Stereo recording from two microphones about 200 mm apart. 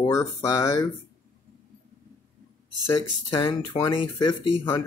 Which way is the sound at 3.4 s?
20° left (ahead or behind).